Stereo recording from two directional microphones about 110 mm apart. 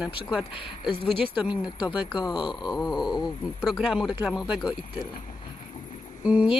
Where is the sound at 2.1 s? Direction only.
45° left (ahead or behind).